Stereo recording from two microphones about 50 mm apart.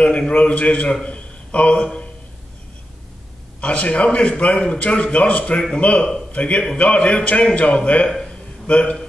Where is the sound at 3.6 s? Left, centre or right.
Left.